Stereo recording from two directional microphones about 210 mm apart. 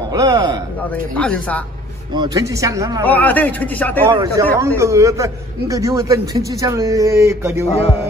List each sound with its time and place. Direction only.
0.1 s a man's voice: 20° right (ahead or behind)
1.1 s speech: 5° left (ahead or behind)
2.1 s a man's voice: 20° right (ahead or behind)
3.1 s a man's voice: 10° left (ahead or behind)
4.1 s a man's voice: 20° right (ahead or behind)